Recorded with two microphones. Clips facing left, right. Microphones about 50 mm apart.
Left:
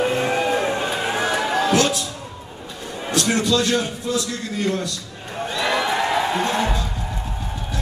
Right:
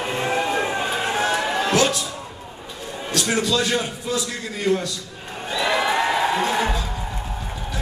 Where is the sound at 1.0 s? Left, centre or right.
Centre.